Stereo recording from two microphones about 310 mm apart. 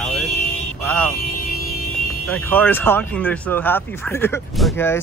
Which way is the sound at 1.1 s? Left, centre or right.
Left.